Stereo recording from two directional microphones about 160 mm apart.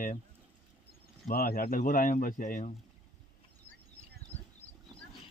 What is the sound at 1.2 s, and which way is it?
Speech, 65° left (ahead or behind).